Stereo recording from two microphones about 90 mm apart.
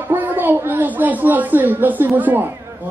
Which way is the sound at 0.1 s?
20° right (ahead or behind).